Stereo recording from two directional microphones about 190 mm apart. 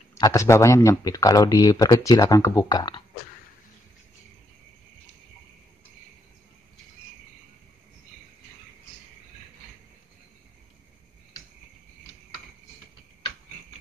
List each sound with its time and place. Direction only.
0.1 s speech: 15° left (ahead or behind)